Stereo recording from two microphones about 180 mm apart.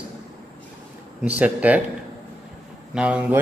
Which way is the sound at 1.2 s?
10° right (ahead or behind).